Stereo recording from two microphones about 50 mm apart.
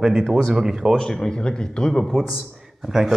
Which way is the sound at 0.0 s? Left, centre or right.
Centre.